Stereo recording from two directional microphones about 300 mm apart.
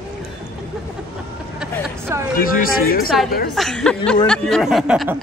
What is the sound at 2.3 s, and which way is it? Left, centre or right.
Speech, left.